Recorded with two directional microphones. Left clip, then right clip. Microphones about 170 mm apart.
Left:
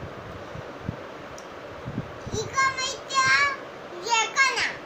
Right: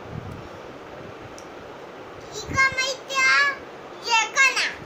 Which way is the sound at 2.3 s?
15° right (ahead or behind).